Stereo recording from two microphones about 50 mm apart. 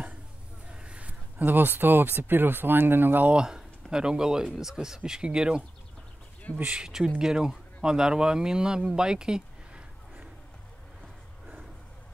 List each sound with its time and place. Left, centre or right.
0.7 s a sound: right
1.4 s speech: right
3.3 s a man's voice: centre
6.6 s a man's voice: right